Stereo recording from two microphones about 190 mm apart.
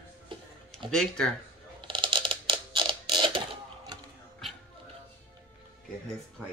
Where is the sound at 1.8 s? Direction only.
25° right (ahead or behind).